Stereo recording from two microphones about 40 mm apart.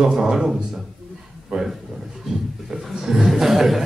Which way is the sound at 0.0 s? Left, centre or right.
Centre.